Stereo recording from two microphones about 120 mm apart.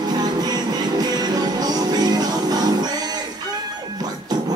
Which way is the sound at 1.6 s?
35° right (ahead or behind).